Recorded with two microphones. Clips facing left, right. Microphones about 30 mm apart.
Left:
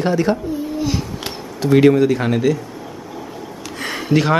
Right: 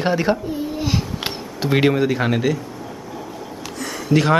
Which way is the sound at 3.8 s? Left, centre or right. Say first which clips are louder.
Left 4 dB; left.